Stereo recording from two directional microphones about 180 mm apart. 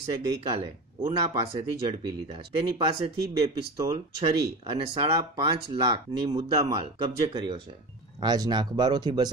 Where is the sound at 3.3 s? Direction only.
20° right (ahead or behind).